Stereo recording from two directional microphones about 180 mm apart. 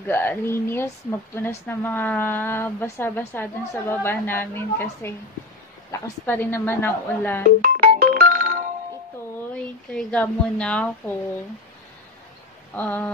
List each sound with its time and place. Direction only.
0.0 s speech: 10° left (ahead or behind)
7.6 s music: 50° right (ahead or behind)
9.9 s speech: 5° left (ahead or behind)
12.7 s speech: 10° left (ahead or behind)